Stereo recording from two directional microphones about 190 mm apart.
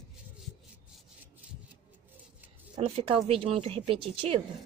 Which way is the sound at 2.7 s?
30° right (ahead or behind).